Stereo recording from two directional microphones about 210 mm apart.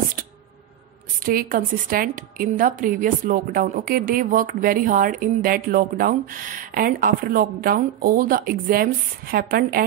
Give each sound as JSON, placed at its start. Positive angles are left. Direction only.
{"t": 1.2, "sound": "a woman's voice", "side_deg": -45}